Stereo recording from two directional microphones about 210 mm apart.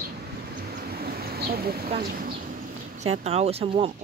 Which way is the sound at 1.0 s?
45° right (ahead or behind).